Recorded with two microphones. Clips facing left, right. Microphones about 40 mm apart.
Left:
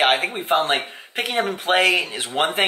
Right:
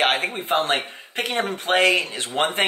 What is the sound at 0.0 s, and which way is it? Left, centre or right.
Speech, centre.